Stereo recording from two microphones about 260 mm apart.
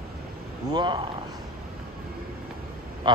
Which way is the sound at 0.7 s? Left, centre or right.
Centre.